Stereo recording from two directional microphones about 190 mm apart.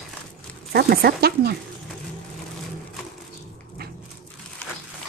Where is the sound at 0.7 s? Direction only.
55° right (ahead or behind).